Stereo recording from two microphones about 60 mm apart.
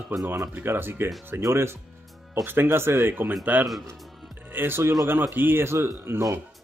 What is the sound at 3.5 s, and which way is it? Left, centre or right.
Speech, right.